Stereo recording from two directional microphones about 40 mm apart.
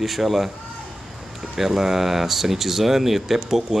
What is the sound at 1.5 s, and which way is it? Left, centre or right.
Speech, centre.